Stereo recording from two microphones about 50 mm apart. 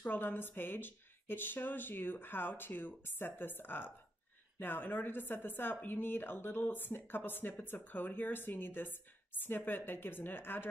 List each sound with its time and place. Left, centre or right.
0.0 s a woman's voice: left